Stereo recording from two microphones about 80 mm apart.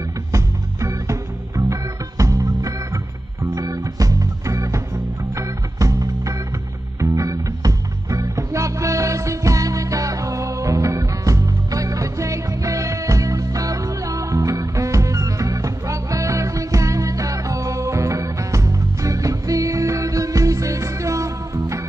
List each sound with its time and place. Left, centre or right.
0.3 s music: right